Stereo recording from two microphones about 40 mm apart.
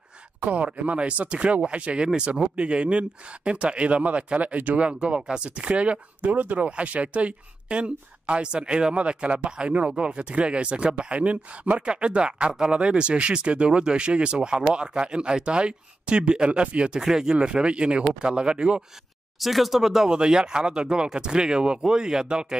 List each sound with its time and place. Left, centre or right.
0.4 s speech: right
17.0 s speech: centre
17.4 s speech: right
19.4 s speech: centre; by 22.6 s right